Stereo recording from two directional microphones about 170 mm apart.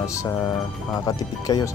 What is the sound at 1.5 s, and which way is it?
Speech, 20° left (ahead or behind).